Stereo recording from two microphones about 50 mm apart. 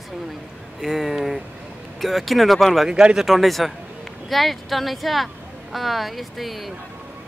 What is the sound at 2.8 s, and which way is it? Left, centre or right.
Speech, centre.